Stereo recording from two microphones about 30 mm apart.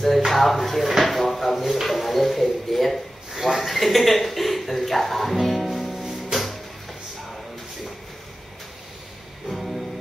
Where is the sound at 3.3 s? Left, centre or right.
Centre.